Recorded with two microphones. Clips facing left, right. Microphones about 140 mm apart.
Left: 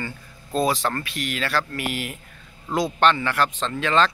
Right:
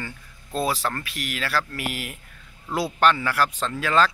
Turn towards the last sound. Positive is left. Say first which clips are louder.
# left 1 dB
turn(degrees=-5)  # may be behind; listen again after turning